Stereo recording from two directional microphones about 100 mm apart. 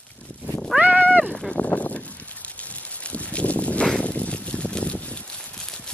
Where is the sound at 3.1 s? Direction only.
10° left (ahead or behind).